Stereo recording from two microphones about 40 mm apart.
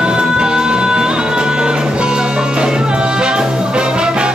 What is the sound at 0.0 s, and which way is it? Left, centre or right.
Music, centre.